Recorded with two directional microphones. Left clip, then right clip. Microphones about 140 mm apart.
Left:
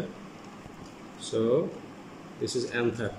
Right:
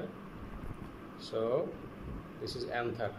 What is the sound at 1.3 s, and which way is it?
Speech, 90° left.